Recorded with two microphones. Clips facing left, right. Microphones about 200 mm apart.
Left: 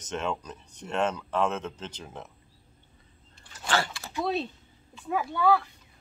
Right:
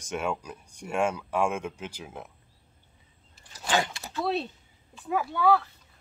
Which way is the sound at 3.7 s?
15° right (ahead or behind).